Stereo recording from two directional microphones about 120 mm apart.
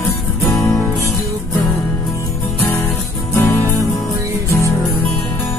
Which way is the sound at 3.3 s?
15° left (ahead or behind).